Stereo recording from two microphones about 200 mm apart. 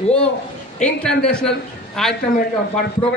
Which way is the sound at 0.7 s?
5° left (ahead or behind).